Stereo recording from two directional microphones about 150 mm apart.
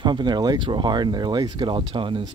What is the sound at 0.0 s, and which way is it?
Speech, 30° right (ahead or behind).